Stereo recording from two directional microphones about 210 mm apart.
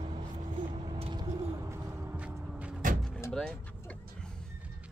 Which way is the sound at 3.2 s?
5° left (ahead or behind).